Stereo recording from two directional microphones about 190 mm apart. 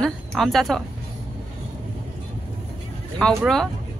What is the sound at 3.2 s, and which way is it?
Speech, centre (ahead or behind).